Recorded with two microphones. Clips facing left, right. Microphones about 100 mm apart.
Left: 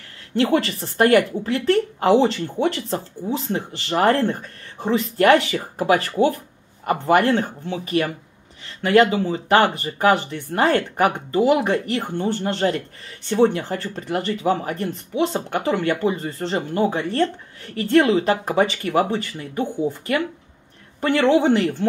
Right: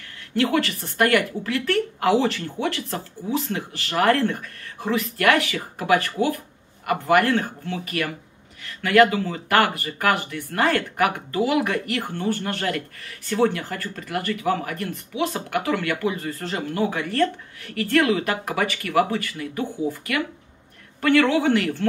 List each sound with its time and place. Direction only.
0.4 s speech: 30° left (ahead or behind)